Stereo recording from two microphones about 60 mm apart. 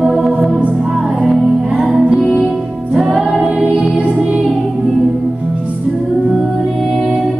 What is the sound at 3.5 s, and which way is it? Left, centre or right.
Music, right.